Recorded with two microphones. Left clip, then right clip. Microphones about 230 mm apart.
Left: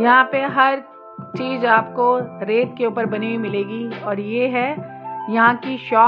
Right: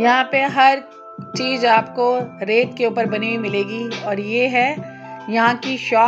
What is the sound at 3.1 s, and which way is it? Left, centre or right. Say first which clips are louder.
Speech: right 2 dB; left.